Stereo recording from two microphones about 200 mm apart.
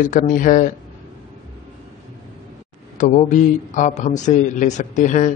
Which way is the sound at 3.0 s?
35° left (ahead or behind).